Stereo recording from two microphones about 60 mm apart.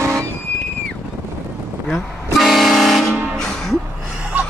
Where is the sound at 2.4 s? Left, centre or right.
Centre.